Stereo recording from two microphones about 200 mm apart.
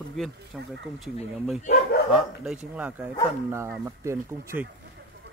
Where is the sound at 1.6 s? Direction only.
50° left (ahead or behind).